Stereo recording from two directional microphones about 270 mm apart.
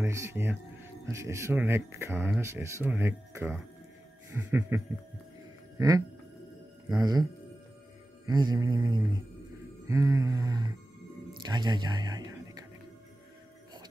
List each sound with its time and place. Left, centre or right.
0.0 s speech: centre
8.3 s speech: centre